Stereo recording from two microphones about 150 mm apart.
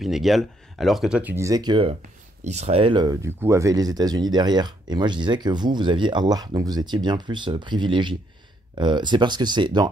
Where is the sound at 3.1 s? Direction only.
15° right (ahead or behind).